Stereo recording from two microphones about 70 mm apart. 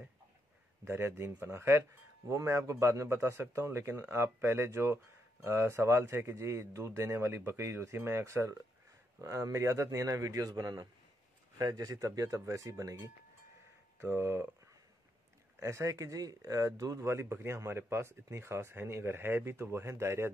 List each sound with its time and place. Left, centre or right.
0.8 s a man's voice: right
13.9 s speech: right
15.6 s speech: right